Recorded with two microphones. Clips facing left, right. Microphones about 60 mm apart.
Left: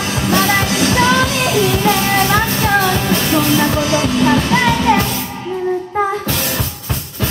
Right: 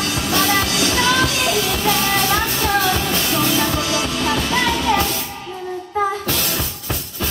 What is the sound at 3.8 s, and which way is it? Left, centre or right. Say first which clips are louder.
Music: left 6 dB; left.